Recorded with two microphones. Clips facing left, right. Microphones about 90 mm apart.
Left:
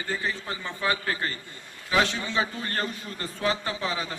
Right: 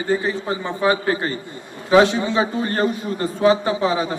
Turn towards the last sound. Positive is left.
turn(degrees=-20)  # may be behind; listen again after turning